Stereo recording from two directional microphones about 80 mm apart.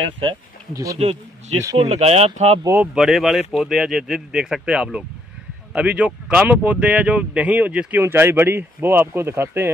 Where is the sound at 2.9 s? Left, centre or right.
Centre.